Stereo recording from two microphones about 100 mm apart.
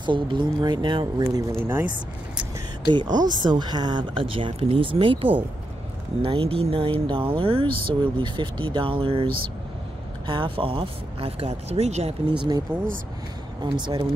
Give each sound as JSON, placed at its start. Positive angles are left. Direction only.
{"t": 0.0, "sound": "speech", "side_deg": -55}
{"t": 1.2, "sound": "speech", "side_deg": -30}
{"t": 2.9, "sound": "speech", "side_deg": -45}
{"t": 13.6, "sound": "speech", "side_deg": -50}